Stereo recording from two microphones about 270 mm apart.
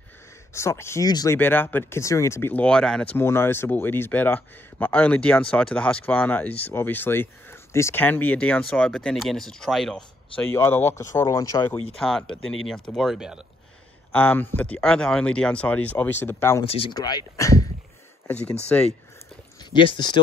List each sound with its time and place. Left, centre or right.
0.5 s speech: centre
12.0 s speech: centre
12.4 s speech: left
12.6 s speech: centre
16.6 s speech: left; by 18.9 s centre
19.6 s speech: centre